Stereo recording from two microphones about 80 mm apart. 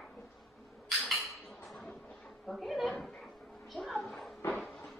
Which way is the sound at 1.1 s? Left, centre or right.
Centre.